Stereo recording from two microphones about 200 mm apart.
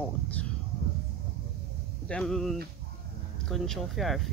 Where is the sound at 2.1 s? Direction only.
5° left (ahead or behind).